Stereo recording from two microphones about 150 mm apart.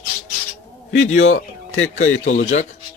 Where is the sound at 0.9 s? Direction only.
50° left (ahead or behind).